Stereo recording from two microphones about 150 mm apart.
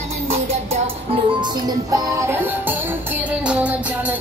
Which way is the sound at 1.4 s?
25° right (ahead or behind).